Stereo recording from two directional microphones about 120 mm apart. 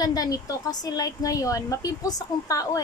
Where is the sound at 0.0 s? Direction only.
30° left (ahead or behind).